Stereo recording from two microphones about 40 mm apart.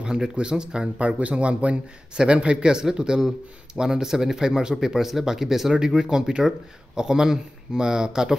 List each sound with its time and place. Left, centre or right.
0.0 s a man's voice: centre
0.9 s a man's voice: right; by 8.4 s centre